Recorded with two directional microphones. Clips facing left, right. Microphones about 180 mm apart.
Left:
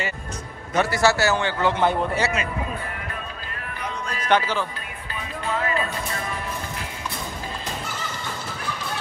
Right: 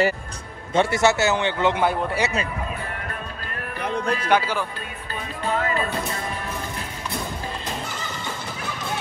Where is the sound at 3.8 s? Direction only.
60° right (ahead or behind).